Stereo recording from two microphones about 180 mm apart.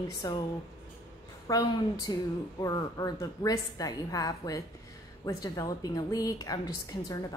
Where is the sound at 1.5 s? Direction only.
20° left (ahead or behind).